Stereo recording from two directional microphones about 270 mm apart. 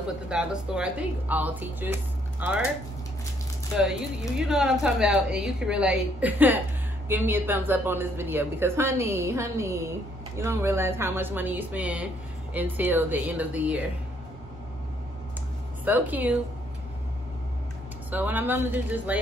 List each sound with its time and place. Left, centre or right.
0.3 s a woman's voice: centre
4.4 s a woman's voice: centre
15.8 s a woman's voice: centre
18.1 s a woman's voice: centre